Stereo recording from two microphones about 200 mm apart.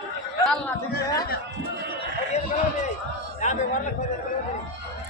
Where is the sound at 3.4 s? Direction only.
35° left (ahead or behind).